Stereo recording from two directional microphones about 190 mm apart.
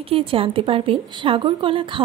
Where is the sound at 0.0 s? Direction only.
30° right (ahead or behind).